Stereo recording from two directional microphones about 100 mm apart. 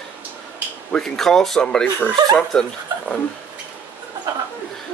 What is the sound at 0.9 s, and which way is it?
Speech, 5° left (ahead or behind).